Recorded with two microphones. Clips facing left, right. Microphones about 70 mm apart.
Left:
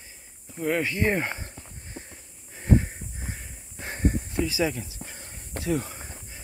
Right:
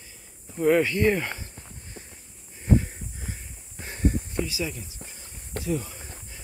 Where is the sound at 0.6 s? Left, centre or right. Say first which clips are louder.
Right 6 dB; centre.